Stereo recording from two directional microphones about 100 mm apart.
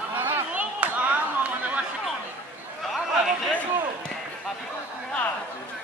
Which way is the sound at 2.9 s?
Centre (ahead or behind).